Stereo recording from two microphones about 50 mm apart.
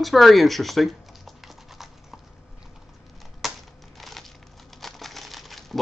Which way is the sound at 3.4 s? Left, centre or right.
Centre.